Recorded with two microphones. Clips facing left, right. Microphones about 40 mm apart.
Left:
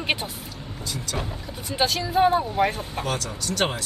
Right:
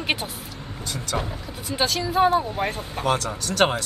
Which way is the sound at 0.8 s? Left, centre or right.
Right.